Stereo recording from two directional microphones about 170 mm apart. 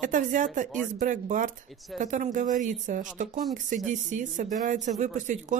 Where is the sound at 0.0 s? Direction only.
50° right (ahead or behind).